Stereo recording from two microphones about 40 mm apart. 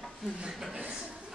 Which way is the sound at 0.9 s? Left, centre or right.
Right.